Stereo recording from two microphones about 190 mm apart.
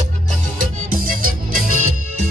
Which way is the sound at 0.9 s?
50° right (ahead or behind).